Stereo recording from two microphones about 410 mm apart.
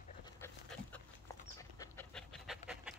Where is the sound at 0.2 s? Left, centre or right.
Centre.